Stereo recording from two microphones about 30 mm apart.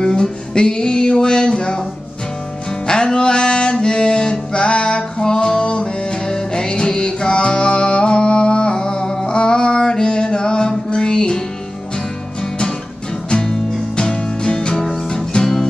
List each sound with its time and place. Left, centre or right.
0.0 s music: left
2.9 s a sound: left
3.8 s music: left
5.6 s music: left
6.3 s music: left
13.4 s music: left
15.4 s music: centre